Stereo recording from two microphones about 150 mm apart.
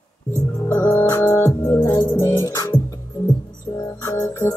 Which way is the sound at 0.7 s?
15° left (ahead or behind).